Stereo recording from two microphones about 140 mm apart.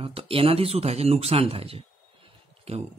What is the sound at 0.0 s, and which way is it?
Speech, 40° right (ahead or behind).